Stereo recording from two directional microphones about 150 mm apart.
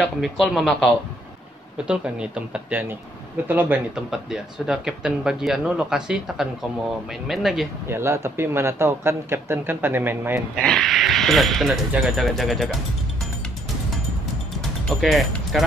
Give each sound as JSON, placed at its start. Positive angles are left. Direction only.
{"t": 0.0, "sound": "speech", "side_deg": 0}
{"t": 1.9, "sound": "speech", "side_deg": -5}
{"t": 7.9, "sound": "speech", "side_deg": -20}
{"t": 10.5, "sound": "speech", "side_deg": 5}
{"t": 14.6, "sound": "music", "side_deg": 0}